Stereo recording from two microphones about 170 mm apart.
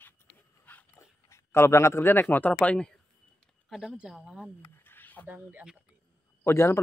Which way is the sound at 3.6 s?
Centre (ahead or behind).